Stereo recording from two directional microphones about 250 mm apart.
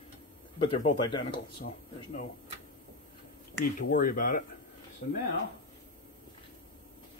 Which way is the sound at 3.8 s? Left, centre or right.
Left.